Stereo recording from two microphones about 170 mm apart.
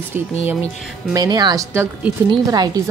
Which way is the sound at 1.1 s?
20° right (ahead or behind).